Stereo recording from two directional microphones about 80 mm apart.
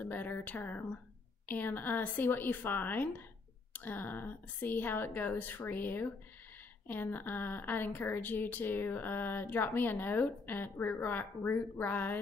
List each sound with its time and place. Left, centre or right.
0.0 s a woman's voice: left